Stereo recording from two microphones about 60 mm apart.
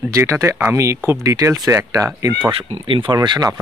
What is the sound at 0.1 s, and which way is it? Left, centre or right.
Speech, right.